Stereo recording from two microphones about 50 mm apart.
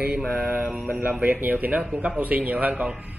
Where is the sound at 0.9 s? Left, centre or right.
Right.